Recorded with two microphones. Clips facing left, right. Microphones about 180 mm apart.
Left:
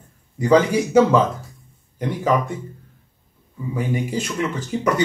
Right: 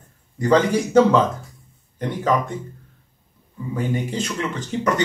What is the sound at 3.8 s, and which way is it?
Speech, 10° left (ahead or behind).